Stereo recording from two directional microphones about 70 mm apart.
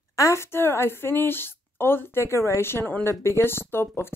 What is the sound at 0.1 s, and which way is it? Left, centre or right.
A woman's voice, left.